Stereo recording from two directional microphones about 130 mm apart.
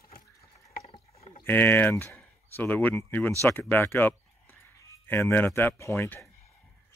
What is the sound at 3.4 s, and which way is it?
Speech, 15° left (ahead or behind).